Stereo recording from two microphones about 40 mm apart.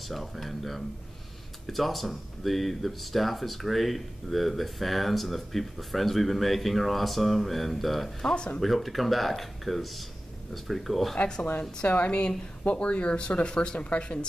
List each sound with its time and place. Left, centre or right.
0.1 s speech: centre
8.2 s speech: centre
8.5 s speech: centre
11.8 s speech: left